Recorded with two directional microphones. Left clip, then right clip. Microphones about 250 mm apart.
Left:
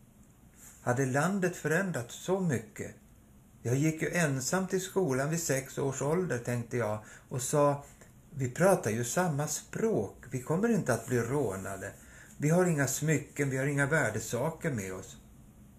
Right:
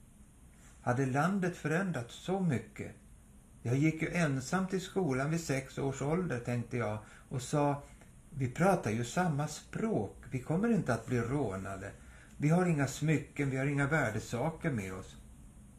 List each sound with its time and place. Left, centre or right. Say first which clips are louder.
0.8 s speech: left 2 dB; centre